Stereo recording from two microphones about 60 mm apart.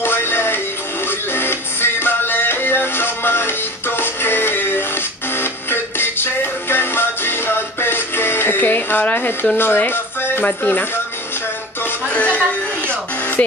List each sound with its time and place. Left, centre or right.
0.0 s music: left
9.6 s speech: left
12.1 s speech: left